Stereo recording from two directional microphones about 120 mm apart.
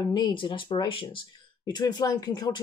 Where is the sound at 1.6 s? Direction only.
35° left (ahead or behind).